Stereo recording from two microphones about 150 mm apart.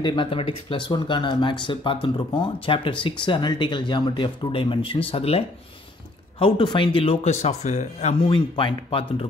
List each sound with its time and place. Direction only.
0.0 s speech: 35° left (ahead or behind)
6.4 s speech: 35° left (ahead or behind); by 8.2 s 50° left (ahead or behind)
8.2 s speech: 35° left (ahead or behind)